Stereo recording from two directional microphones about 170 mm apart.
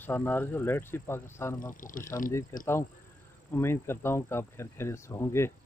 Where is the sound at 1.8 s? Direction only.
50° left (ahead or behind).